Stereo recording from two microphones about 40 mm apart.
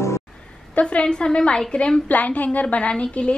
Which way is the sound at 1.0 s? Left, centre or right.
Left.